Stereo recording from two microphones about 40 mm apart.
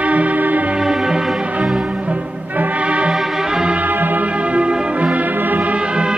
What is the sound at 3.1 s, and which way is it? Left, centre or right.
Music, centre.